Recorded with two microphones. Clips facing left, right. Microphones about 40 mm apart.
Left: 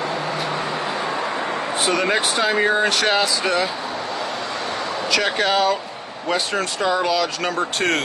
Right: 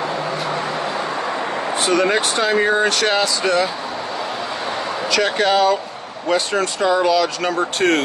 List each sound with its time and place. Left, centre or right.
1.9 s speech: centre
5.1 s speech: centre